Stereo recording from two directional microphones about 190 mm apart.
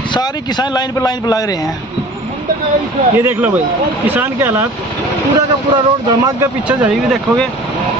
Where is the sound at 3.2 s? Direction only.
10° right (ahead or behind).